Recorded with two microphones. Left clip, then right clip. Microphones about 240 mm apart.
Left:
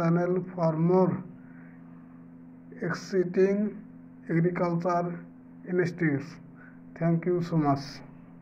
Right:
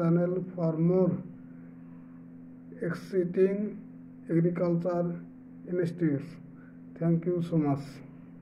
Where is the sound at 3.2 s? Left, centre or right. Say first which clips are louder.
Left 1 dB; left.